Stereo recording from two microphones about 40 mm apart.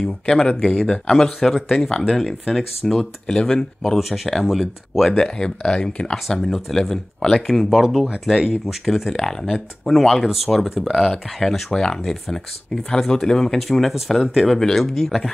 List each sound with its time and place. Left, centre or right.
0.0 s speech: centre
1.0 s speech: centre
4.0 s speech: centre
5.1 s speech: centre
6.5 s speech: centre
9.1 s speech: centre
11.7 s speech: centre
13.6 s speech: centre